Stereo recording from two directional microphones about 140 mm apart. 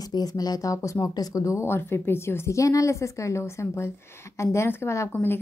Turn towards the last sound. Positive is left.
turn(degrees=15)  # may be behind; listen again after turning